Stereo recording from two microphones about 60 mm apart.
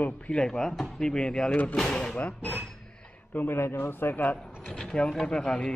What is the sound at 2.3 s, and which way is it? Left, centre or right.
Speech, left.